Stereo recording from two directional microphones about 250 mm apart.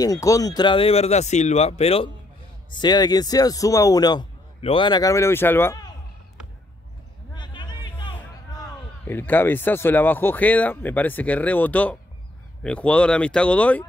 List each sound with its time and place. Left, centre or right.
0.0 s speech: centre
7.3 s a sound: centre
9.0 s speech: centre